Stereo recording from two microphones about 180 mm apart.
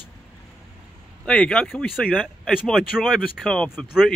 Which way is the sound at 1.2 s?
5° left (ahead or behind).